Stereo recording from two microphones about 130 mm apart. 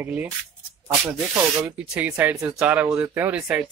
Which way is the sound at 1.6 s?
10° right (ahead or behind).